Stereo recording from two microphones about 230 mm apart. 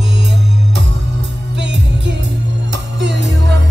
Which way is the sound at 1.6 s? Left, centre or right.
Right.